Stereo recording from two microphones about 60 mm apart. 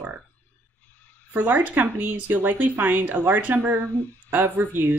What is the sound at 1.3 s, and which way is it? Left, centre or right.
A woman's voice, right.